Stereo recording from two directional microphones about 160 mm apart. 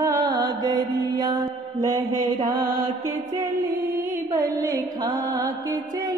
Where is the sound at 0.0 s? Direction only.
20° right (ahead or behind).